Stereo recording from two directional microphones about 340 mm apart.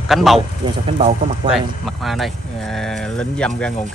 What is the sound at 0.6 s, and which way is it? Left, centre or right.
Speech, centre.